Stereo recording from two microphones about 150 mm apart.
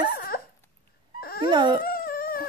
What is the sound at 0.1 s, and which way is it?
Dog, 80° left.